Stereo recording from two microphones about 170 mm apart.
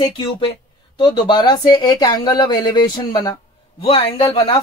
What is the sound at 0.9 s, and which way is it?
Speech, 25° left (ahead or behind).